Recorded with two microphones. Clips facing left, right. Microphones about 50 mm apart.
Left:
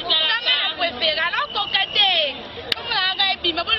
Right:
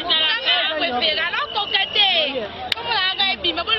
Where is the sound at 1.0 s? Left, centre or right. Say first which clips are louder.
Even; centre.